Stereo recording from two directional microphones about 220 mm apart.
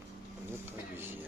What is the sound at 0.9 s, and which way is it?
Vehicle, 10° right (ahead or behind).